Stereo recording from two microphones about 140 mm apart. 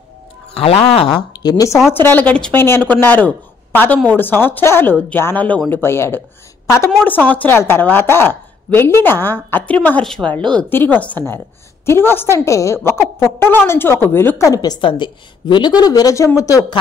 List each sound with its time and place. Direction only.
0.6 s speech: 45° left (ahead or behind); by 1.8 s 25° left (ahead or behind)
1.9 s a woman's voice: 15° left (ahead or behind)
7.3 s a woman's voice: 15° left (ahead or behind)